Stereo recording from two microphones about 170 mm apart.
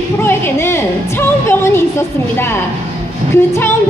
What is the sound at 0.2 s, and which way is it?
Speech, 15° left (ahead or behind).